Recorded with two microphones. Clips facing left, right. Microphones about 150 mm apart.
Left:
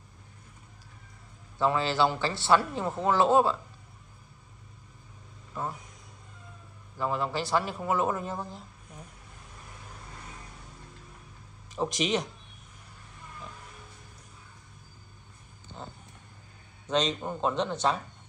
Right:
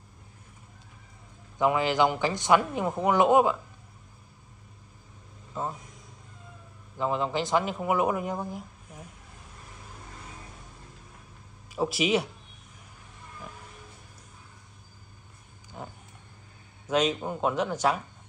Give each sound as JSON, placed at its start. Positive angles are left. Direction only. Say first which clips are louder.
{"t": 1.6, "sound": "a man's voice", "louder": "right 2 dB", "side_deg": -15}
{"t": 5.5, "sound": "speech", "louder": "right 2 dB", "side_deg": -20}
{"t": 7.0, "sound": "a man's voice", "louder": "right 2 dB", "side_deg": -20}
{"t": 11.7, "sound": "a man's voice", "louder": "right 3 dB", "side_deg": -5}
{"t": 15.8, "sound": "vehicle", "louder": "right 2 dB", "side_deg": -10}
{"t": 16.8, "sound": "a man's voice", "louder": "right 2 dB", "side_deg": -10}